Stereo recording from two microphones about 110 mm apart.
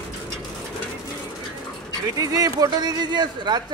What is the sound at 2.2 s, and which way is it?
A man's voice, 35° right (ahead or behind).